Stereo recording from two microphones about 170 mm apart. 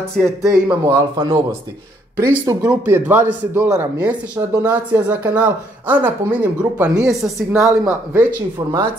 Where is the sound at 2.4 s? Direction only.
20° right (ahead or behind).